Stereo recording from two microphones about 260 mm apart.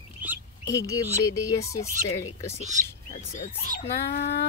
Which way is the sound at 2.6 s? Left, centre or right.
Right.